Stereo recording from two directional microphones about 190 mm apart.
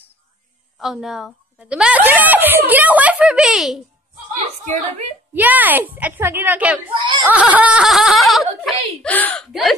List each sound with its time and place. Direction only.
0.7 s speech: centre (ahead or behind)
5.3 s speech: 10° right (ahead or behind)
7.0 s a sound: 25° right (ahead or behind)
7.2 s speech: 10° right (ahead or behind)